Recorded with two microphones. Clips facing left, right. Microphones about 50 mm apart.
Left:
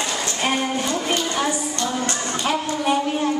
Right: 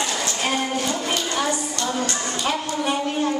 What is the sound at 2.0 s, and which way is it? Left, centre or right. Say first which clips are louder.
Speech: left 1 dB; left.